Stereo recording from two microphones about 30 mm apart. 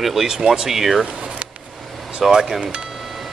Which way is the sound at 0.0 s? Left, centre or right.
Centre.